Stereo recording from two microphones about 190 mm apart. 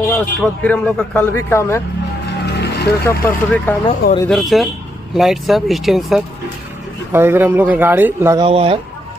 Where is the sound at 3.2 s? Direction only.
10° left (ahead or behind).